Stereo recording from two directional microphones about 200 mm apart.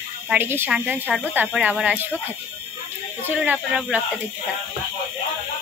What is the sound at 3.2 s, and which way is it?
Speech, 10° right (ahead or behind).